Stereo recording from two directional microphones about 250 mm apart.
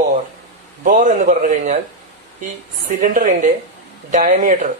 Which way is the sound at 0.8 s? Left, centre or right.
Right.